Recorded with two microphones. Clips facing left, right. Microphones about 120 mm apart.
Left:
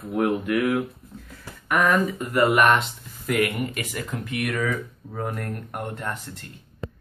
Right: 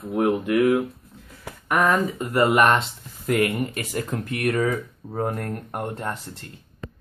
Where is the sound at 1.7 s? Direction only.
25° right (ahead or behind).